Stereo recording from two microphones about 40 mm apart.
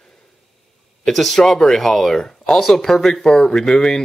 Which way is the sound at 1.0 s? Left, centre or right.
Centre.